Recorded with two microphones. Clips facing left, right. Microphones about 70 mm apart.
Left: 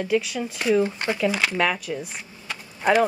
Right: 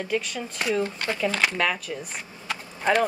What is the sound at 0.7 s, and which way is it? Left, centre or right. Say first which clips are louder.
Speech: left 5 dB; centre.